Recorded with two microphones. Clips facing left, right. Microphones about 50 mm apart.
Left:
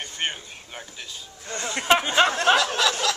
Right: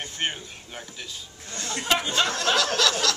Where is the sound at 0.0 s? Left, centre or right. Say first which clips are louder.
Even; centre.